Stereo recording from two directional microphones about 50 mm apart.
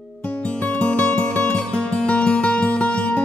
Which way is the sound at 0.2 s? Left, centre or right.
Left.